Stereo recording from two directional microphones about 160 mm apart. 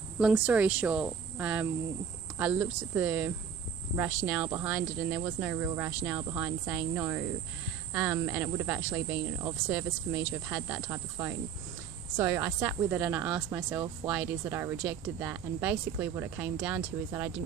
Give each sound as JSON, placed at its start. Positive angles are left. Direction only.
{"t": 0.2, "sound": "speech", "side_deg": -5}